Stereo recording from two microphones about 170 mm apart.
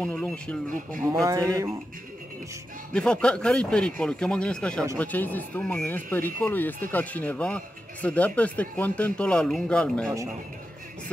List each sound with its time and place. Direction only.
0.0 s speech: 5° left (ahead or behind)
1.2 s speech: 20° right (ahead or behind)
2.9 s speech: 5° left (ahead or behind)